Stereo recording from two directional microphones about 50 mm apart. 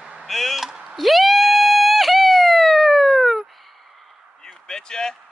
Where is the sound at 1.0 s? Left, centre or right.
Centre.